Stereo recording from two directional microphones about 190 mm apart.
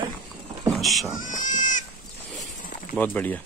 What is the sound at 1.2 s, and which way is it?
Goat, 45° left (ahead or behind).